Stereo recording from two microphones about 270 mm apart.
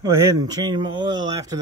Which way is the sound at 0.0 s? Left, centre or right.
Centre.